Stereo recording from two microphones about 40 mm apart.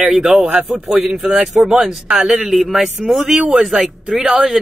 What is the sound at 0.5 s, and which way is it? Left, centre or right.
A man's voice, centre.